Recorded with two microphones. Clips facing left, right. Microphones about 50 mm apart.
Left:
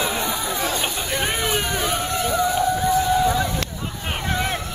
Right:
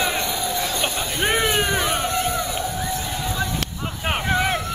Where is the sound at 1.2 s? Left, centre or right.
Centre.